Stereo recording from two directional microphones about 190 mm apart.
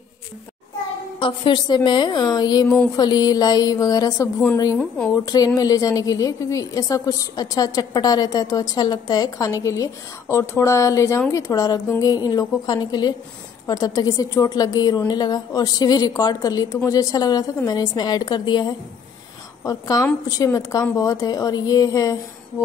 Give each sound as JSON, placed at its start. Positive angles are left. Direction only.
{"t": 1.2, "sound": "a woman's voice", "side_deg": 25}
{"t": 4.7, "sound": "speech", "side_deg": 5}
{"t": 5.2, "sound": "a woman's voice", "side_deg": 20}